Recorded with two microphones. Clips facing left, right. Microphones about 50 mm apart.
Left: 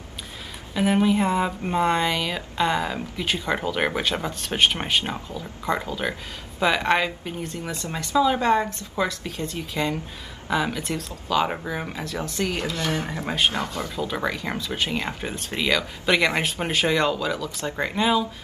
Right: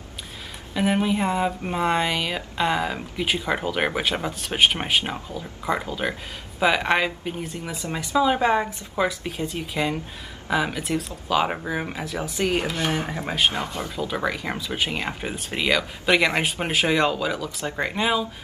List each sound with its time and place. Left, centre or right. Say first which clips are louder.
0.7 s a woman's voice: left 2 dB; centre; by 13.8 s right
13.9 s a woman's voice: right 1 dB; centre